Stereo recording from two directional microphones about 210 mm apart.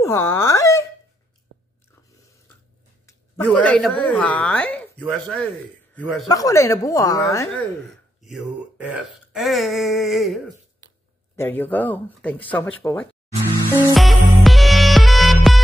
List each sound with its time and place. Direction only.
0.0 s speech: 15° left (ahead or behind)
3.1 s a woman's voice: 10° left (ahead or behind)
6.2 s speech: 15° left (ahead or behind)
8.2 s speech: 5° right (ahead or behind)
11.3 s speech: 10° left (ahead or behind)
13.9 s music: centre (ahead or behind)